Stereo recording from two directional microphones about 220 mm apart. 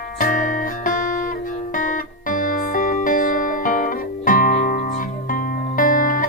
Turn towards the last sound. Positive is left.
turn(degrees=40)  # may be behind; listen again after turning